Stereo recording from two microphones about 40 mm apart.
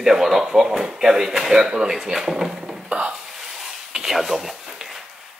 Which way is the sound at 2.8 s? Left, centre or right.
Right.